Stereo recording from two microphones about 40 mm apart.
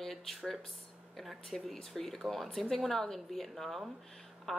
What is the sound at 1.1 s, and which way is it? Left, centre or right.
Speech, centre.